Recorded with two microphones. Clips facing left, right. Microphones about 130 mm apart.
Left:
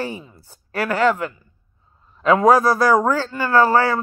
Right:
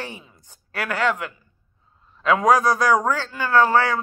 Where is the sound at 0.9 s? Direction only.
40° left (ahead or behind).